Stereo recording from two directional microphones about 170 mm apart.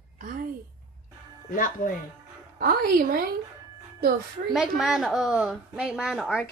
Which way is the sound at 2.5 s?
60° right (ahead or behind).